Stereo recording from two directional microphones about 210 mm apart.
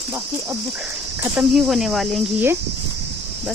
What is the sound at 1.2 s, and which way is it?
Speech, 5° right (ahead or behind).